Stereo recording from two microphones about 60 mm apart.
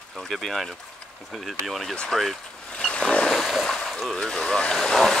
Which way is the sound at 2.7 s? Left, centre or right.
Centre.